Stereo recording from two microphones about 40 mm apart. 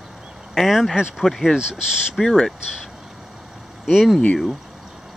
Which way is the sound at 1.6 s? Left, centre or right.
Centre.